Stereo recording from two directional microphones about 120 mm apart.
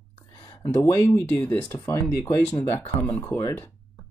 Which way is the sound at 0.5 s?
25° left (ahead or behind).